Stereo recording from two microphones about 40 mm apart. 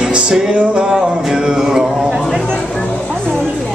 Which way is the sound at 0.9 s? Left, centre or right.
Centre.